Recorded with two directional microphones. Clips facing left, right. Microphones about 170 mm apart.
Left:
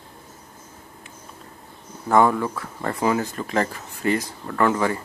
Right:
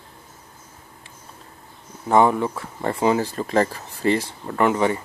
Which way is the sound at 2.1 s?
20° right (ahead or behind).